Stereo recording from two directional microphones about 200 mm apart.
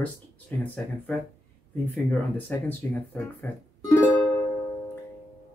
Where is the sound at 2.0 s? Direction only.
10° left (ahead or behind).